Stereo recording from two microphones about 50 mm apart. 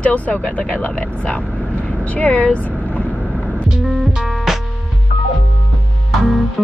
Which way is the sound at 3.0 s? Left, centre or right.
Centre.